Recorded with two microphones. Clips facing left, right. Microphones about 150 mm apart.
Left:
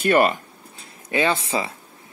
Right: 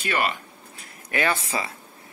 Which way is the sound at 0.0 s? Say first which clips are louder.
Left 8 dB; 50° left (ahead or behind).